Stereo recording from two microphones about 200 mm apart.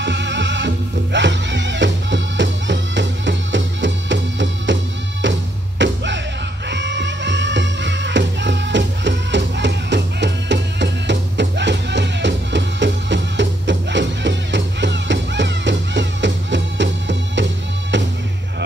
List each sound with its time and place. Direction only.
0.0 s music: 60° right (ahead or behind)